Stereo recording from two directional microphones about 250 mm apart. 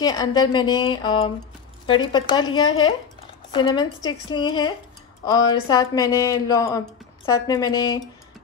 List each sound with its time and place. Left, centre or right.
0.0 s speech: centre